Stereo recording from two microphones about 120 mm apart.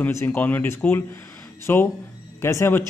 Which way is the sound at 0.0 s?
20° left (ahead or behind).